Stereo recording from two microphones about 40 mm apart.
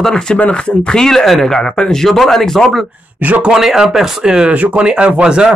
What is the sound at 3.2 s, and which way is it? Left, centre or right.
Speech, right.